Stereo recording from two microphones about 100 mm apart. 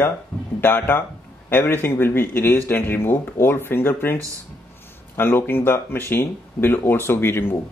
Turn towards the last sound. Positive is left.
turn(degrees=20)  # may be behind; listen again after turning